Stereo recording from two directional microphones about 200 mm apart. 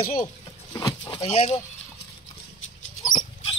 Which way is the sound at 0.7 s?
20° left (ahead or behind).